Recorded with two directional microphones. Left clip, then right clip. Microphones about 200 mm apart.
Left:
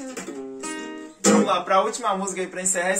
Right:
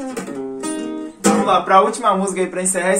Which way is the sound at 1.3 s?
Centre (ahead or behind).